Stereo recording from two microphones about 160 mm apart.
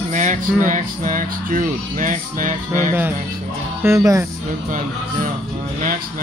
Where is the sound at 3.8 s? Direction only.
20° right (ahead or behind).